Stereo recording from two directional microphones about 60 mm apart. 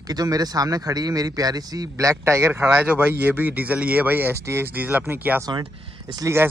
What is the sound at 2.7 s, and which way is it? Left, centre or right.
Speech, right.